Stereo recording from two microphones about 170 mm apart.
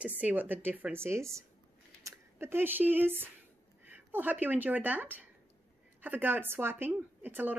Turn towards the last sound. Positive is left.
turn(degrees=-10)  # may be behind; listen again after turning